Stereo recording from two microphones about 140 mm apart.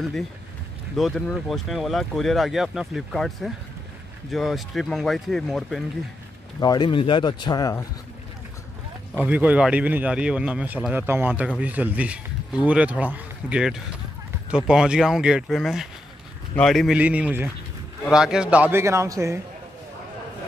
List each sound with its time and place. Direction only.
0.9 s speech: 5° left (ahead or behind)
6.6 s speech: 30° left (ahead or behind)
9.1 s a man's voice: 10° right (ahead or behind)
16.9 s a man's voice: 10° right (ahead or behind)